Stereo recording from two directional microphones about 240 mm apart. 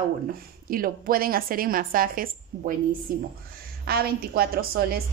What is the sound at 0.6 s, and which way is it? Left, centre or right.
A woman's voice, right.